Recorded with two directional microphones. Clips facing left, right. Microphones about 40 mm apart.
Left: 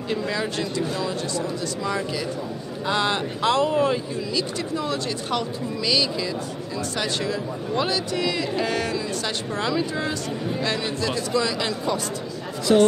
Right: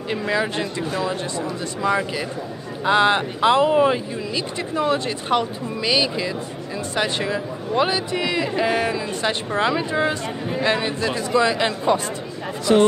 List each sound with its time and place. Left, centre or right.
0.1 s speech: centre